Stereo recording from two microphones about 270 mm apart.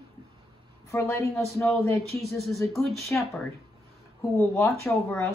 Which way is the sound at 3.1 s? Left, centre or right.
Centre.